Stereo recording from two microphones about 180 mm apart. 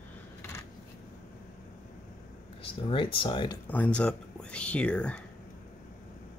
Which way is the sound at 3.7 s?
10° left (ahead or behind).